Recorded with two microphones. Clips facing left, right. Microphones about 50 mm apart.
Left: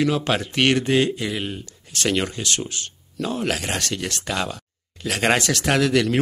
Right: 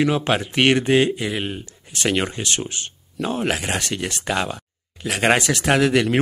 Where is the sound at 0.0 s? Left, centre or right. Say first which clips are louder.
Right 2 dB; right.